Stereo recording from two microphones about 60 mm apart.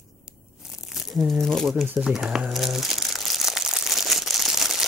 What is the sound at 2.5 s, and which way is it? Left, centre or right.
Crumpling, centre.